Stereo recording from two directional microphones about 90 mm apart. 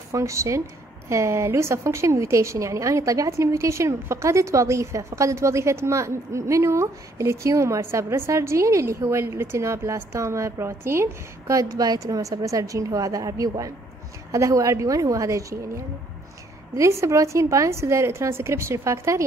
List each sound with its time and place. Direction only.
0.1 s a woman's voice: 35° right (ahead or behind)